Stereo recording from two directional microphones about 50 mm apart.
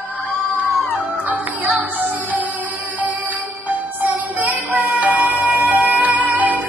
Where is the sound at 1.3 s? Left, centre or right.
Right.